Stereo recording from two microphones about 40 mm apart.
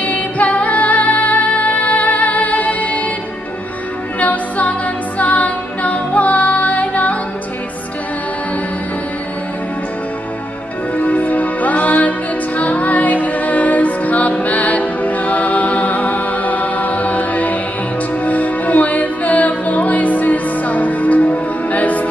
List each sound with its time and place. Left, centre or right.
0.0 s music: left
4.2 s music: left
11.0 s music: left